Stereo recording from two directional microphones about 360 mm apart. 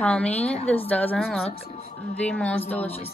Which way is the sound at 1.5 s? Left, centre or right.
Centre.